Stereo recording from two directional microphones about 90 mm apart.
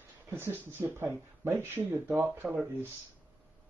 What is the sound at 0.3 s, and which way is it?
Speech, 25° right (ahead or behind).